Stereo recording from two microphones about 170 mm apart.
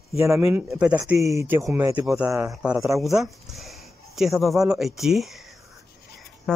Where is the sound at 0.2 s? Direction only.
15° right (ahead or behind).